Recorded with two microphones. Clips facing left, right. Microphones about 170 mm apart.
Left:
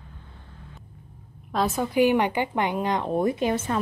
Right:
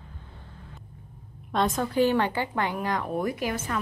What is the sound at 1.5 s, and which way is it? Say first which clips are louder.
A woman's voice: left 1 dB; 5° left (ahead or behind).